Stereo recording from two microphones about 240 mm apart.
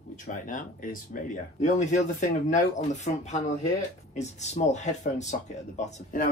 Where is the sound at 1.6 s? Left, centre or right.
Left.